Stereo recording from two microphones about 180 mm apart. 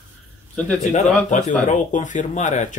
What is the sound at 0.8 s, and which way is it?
Speech, 40° left (ahead or behind).